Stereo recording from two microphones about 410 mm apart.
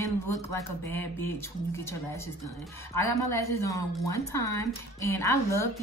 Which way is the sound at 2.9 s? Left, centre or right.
Left.